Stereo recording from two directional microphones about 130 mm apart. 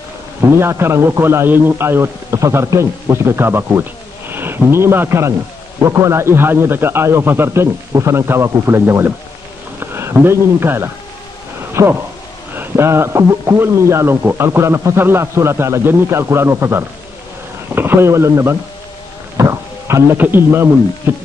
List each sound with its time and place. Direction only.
0.4 s a man's voice: 20° right (ahead or behind)
19.3 s a sound: 20° right (ahead or behind)
21.1 s speech: 15° right (ahead or behind)